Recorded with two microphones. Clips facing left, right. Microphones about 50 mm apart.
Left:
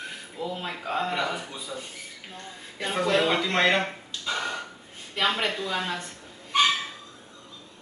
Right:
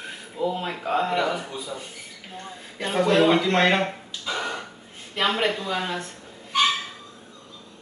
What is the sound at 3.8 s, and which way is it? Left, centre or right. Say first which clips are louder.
Speech: right 4 dB; centre.